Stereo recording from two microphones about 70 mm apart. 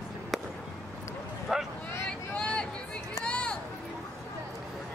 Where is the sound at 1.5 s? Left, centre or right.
Centre.